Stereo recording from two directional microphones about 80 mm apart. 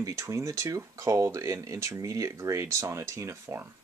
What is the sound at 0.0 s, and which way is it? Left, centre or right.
Speech, right.